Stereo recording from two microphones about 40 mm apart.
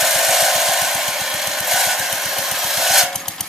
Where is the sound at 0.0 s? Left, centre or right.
Centre.